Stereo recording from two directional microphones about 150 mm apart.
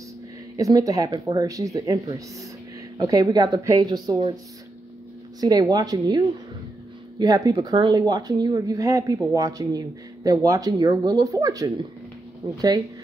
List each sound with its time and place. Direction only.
0.6 s speech: 25° right (ahead or behind)
5.4 s speech: 25° right (ahead or behind)